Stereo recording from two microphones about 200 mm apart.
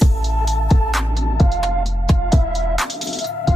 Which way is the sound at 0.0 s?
Centre (ahead or behind).